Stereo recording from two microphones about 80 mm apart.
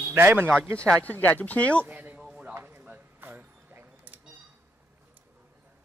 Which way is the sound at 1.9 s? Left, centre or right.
Centre.